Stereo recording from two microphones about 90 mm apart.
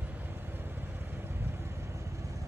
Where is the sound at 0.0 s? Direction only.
20° right (ahead or behind).